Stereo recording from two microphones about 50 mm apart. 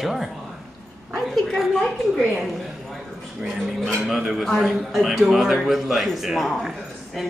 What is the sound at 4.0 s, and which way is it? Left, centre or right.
A man's voice, centre.